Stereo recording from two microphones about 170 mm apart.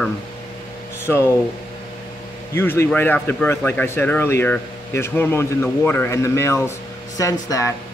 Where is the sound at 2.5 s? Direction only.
15° left (ahead or behind).